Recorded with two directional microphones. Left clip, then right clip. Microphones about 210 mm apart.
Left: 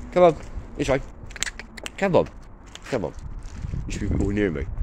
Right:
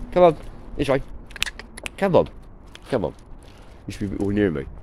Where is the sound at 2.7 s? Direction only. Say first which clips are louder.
Right 3 dB; 25° right (ahead or behind).